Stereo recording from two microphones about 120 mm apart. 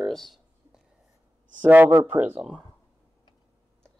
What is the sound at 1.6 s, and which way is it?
Speech, 15° right (ahead or behind).